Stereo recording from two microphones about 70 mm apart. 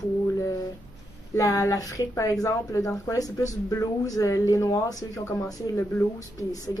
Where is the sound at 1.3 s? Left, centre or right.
Left.